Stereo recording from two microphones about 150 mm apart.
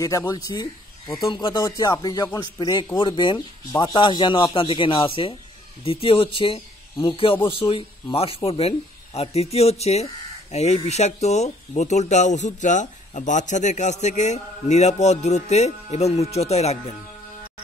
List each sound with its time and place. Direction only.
0.3 s speech: 30° left (ahead or behind); by 16.9 s 45° left (ahead or behind)